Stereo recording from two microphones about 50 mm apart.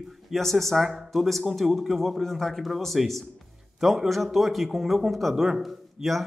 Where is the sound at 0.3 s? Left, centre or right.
Centre.